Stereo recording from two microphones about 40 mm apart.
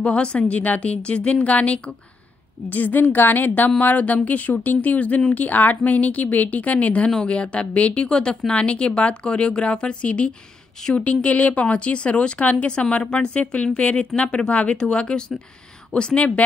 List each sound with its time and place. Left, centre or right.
0.0 s speech: left
2.7 s speech: left